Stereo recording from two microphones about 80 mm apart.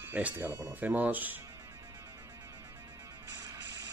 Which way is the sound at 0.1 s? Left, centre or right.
Right.